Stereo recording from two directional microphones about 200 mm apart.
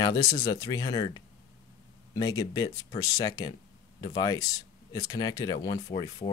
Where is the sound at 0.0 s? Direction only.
20° left (ahead or behind).